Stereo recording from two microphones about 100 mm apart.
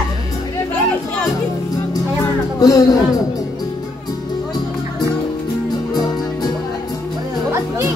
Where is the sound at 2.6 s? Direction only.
35° left (ahead or behind).